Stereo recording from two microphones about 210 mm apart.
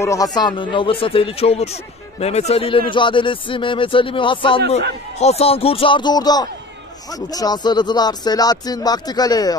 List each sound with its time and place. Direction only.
0.0 s speech: 15° left (ahead or behind)